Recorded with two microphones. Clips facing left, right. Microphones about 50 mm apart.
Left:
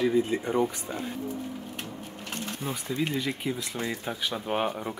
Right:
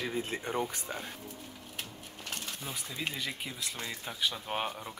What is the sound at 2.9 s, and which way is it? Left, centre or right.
Speech, centre.